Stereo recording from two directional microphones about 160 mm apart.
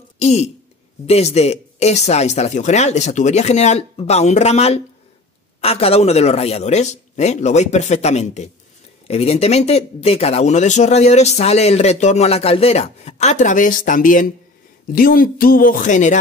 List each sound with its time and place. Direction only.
0.2 s speech: 45° left (ahead or behind)